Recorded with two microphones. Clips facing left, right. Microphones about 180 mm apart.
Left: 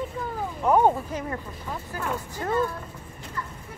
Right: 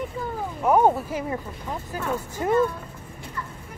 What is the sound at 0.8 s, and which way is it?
Speech, 10° right (ahead or behind).